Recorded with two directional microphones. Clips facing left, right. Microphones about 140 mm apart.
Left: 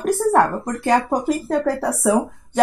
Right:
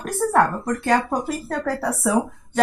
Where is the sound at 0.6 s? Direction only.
15° left (ahead or behind).